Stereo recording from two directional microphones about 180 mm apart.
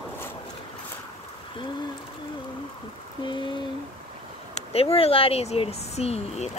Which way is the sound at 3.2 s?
25° left (ahead or behind).